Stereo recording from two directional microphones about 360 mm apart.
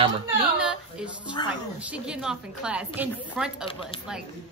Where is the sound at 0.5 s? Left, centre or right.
Centre.